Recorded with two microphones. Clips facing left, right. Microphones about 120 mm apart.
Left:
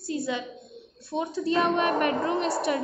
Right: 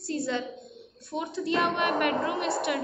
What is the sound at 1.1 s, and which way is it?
A woman's voice, 25° left (ahead or behind).